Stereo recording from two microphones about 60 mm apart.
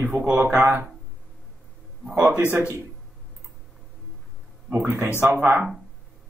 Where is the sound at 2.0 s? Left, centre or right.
Right.